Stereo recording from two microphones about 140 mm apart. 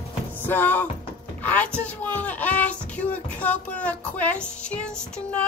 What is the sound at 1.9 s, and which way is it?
Speech, 10° left (ahead or behind).